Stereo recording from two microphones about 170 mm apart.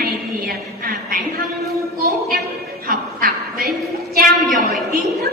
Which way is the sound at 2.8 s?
55° right (ahead or behind).